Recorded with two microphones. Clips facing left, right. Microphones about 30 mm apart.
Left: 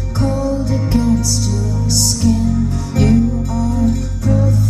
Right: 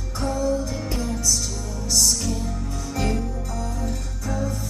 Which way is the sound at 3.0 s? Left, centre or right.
Left.